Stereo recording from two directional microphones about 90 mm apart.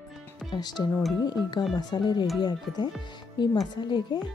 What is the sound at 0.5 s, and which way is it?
Speech, 50° left (ahead or behind).